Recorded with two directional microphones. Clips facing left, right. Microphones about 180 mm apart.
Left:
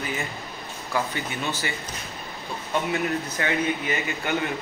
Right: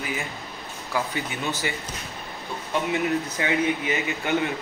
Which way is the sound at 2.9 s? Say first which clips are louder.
Right 2 dB; 15° right (ahead or behind).